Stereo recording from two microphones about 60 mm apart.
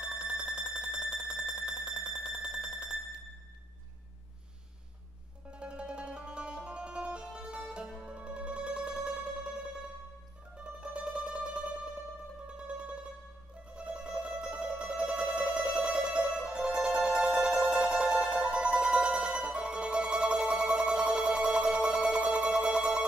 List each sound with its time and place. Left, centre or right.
0.0 s alarm clock: centre
5.5 s music: centre
10.8 s mandolin: centre
13.7 s music: centre